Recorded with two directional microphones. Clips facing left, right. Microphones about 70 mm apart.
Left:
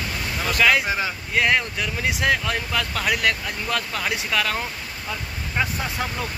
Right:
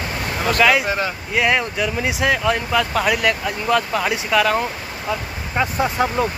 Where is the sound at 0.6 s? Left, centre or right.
Centre.